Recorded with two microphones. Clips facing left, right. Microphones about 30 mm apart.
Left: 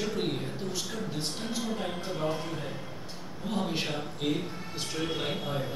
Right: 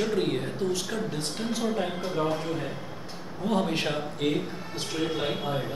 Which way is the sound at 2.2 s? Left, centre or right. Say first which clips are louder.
Right 4 dB; centre.